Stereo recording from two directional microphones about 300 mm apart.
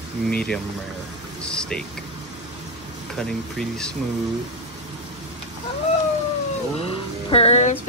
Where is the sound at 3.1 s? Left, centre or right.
Centre.